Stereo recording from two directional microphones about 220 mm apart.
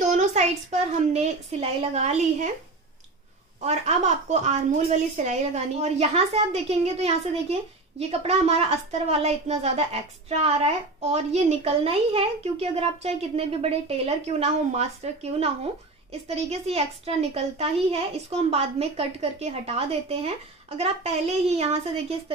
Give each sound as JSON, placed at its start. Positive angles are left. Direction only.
{"t": 0.0, "sound": "a woman's voice", "side_deg": -30}
{"t": 3.6, "sound": "a woman's voice", "side_deg": -30}
{"t": 16.1, "sound": "a woman's voice", "side_deg": -30}